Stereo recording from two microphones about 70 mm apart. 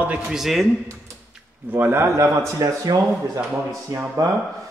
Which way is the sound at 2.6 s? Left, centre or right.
Right.